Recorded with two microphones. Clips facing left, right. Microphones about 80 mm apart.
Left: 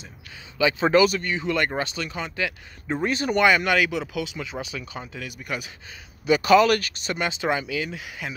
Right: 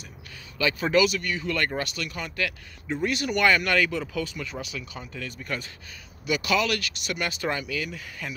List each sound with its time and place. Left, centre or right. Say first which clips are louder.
0.6 s speech: left 4 dB; centre
0.8 s speech: left 3 dB; left
1.3 s speech: left 3 dB; left
2.9 s speech: left 3 dB; left
3.4 s speech: left 1 dB; centre
6.2 s speech: left 8 dB; left
7.2 s speech: left 4 dB; left